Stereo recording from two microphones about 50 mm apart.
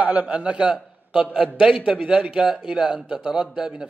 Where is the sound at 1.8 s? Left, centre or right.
Right.